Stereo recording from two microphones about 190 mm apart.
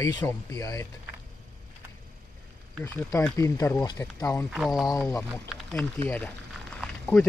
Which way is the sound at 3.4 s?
15° left (ahead or behind).